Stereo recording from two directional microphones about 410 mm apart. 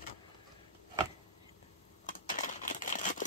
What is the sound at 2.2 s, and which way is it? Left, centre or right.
Crumpling, centre.